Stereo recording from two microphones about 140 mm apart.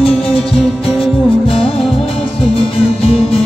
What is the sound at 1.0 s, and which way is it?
Music, 40° left (ahead or behind).